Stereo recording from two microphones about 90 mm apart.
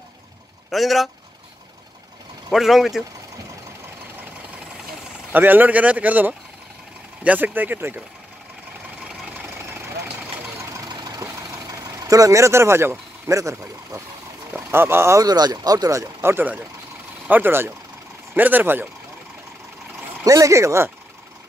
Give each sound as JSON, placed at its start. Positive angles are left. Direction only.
{"t": 0.7, "sound": "speech", "side_deg": 0}
{"t": 2.5, "sound": "speech", "side_deg": -5}
{"t": 5.3, "sound": "speech", "side_deg": -20}
{"t": 10.9, "sound": "vehicle", "side_deg": -55}
{"t": 11.1, "sound": "vehicle", "side_deg": -40}
{"t": 13.3, "sound": "speech", "side_deg": -35}
{"t": 14.5, "sound": "speech", "side_deg": -25}
{"t": 15.2, "sound": "speech", "side_deg": -45}
{"t": 20.2, "sound": "speech", "side_deg": -35}